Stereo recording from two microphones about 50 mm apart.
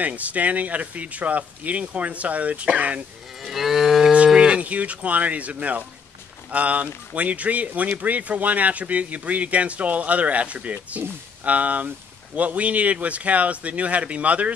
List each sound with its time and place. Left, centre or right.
0.0 s speech: right
3.4 s livestock: centre
4.3 s speech: centre